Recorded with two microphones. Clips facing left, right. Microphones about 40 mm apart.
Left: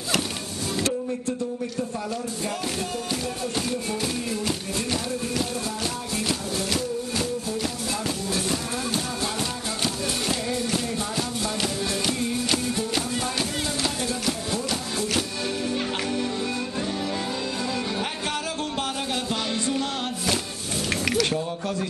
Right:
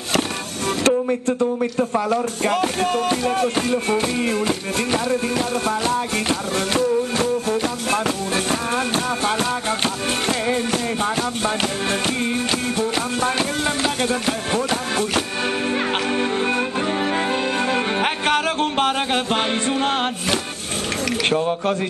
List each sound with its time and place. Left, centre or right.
0.8 s speech: right
5.9 s music: right
8.5 s music: right
14.0 s music: right
17.6 s music: right
21.2 s speech: right